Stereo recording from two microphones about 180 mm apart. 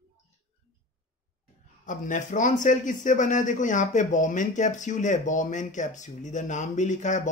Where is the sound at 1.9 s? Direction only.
45° left (ahead or behind).